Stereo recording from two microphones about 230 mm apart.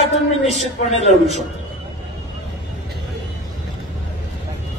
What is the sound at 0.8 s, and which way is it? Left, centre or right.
Speech, left.